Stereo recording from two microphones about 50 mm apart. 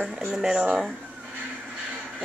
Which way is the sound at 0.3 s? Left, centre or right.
Centre.